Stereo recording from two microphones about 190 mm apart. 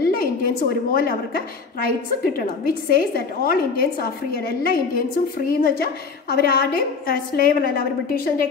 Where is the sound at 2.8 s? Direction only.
50° left (ahead or behind).